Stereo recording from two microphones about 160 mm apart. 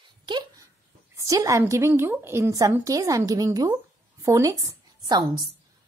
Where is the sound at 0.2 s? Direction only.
25° right (ahead or behind).